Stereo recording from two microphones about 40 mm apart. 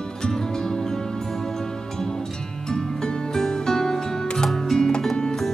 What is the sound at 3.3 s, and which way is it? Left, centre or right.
Music, centre.